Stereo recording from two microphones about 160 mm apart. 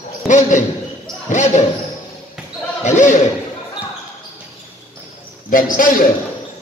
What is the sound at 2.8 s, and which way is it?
Speech, 50° left (ahead or behind).